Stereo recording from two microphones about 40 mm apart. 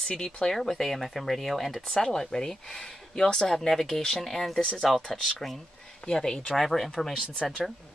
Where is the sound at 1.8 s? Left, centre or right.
Centre.